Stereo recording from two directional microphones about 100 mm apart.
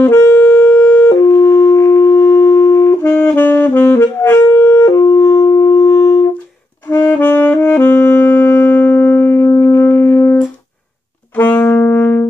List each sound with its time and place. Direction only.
0.0 s wind instrument: 25° left (ahead or behind)
3.0 s saxophone: 15° left (ahead or behind); by 6.2 s 30° left (ahead or behind)
6.9 s saxophone: 20° left (ahead or behind)